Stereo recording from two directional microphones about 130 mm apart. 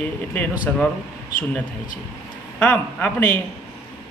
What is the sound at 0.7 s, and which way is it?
Speech, 15° left (ahead or behind).